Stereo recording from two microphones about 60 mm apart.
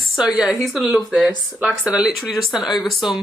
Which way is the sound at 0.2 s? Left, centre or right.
Centre.